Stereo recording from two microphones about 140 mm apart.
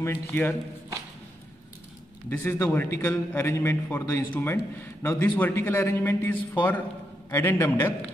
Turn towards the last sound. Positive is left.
turn(degrees=15)  # may be behind; listen again after turning